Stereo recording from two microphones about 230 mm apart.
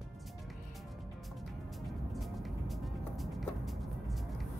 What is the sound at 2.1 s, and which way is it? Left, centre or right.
Music, centre.